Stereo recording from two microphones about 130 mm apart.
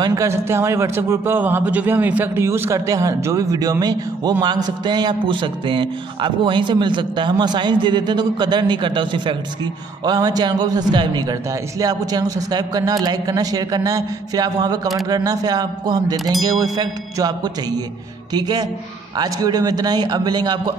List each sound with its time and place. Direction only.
0.0 s a man's voice: 25° right (ahead or behind)